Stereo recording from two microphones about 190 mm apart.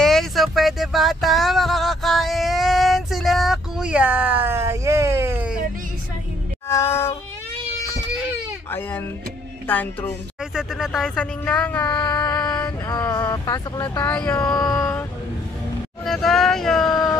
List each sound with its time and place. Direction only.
0.0 s a sound: centre (ahead or behind)
6.7 s a sound: 15° left (ahead or behind)
8.6 s speech: 10° left (ahead or behind)
10.5 s speech: centre (ahead or behind)
11.9 s music: 25° left (ahead or behind)
12.8 s speech: 20° left (ahead or behind)
14.1 s speech: 5° left (ahead or behind)
14.5 s speech: 20° left (ahead or behind)
16.1 s speech: centre (ahead or behind)